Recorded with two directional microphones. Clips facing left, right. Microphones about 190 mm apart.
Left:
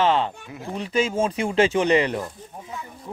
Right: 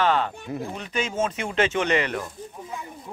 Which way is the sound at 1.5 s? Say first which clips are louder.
Left 4 dB; 35° left (ahead or behind).